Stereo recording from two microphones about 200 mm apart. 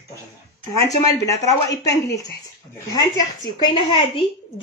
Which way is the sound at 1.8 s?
15° left (ahead or behind).